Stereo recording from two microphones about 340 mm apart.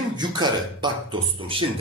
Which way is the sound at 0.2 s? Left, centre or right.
Centre.